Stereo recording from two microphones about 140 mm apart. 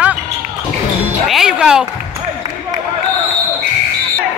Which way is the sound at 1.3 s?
5° right (ahead or behind).